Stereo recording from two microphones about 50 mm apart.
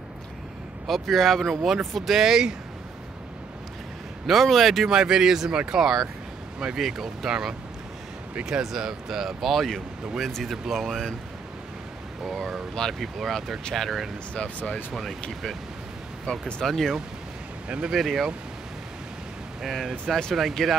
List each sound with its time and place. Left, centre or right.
0.8 s speech: centre
2.1 s speech: centre
4.3 s speech: centre
4.9 s speech: centre
8.5 s speech: centre
12.3 s speech: centre
12.7 s speech: centre
14.3 s speech: left
14.9 s speech: centre
16.3 s speech: centre
16.6 s speech: centre
17.6 s speech: centre
17.9 s speech: centre
19.6 s speech: centre